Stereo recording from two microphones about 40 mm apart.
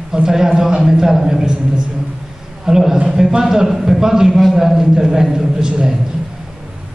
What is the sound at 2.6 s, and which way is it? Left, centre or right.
A man's voice, centre.